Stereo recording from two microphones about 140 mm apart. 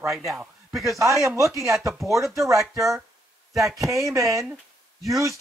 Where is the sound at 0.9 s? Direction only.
20° right (ahead or behind).